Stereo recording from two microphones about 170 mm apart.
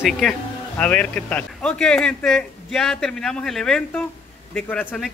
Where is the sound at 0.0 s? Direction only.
Centre (ahead or behind).